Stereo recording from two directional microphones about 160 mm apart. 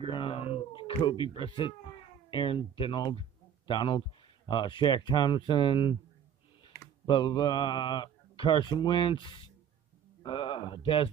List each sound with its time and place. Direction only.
0.0 s cat: 35° left (ahead or behind)
4.5 s speech: 30° left (ahead or behind)
7.1 s speech: 30° left (ahead or behind)